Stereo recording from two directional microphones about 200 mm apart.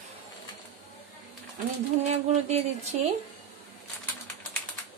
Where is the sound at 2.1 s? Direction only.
35° right (ahead or behind).